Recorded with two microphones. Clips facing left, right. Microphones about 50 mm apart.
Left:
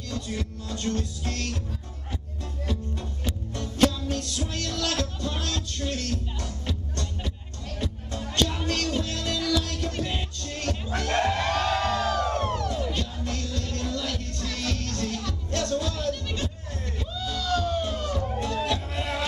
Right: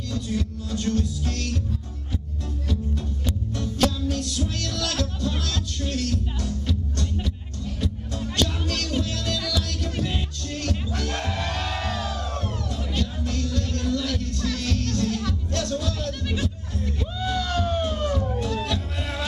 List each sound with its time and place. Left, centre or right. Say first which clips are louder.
0.3 s music: right 4 dB; centre
3.3 s music: right 3 dB; centre
7.8 s music: right 2 dB; centre
9.8 s music: right 2 dB; centre
10.1 s music: right 2 dB; centre
11.0 s crowd: left 4 dB; centre
11.3 s music: left 4 dB; centre
12.4 s crowd: left 4 dB; left
12.7 s music: right 1 dB; centre
17.2 s a sound: right 1 dB; right
17.8 s music: right 4 dB; centre
18.3 s music: even; centre